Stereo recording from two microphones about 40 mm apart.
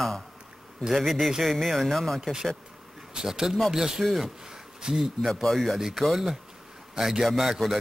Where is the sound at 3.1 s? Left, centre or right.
Centre.